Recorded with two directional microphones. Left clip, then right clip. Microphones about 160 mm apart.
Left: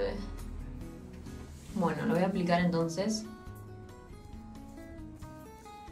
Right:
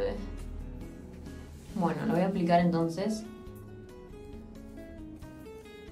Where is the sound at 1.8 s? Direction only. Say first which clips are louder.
Right 1 dB; 10° right (ahead or behind).